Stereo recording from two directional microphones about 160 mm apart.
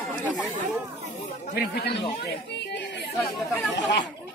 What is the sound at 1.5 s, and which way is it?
Speech, 80° left.